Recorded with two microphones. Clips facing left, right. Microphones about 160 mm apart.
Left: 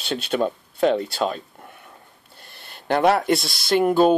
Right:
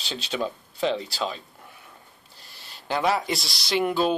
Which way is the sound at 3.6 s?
50° left (ahead or behind).